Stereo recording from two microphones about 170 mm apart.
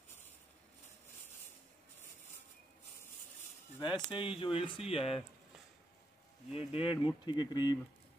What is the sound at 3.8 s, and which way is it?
Speech, 25° left (ahead or behind).